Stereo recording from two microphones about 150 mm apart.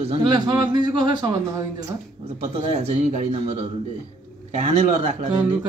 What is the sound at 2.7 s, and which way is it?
Speech, 45° right (ahead or behind).